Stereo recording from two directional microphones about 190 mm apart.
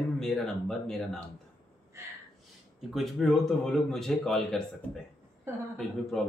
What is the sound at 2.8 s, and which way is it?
Speech, centre (ahead or behind).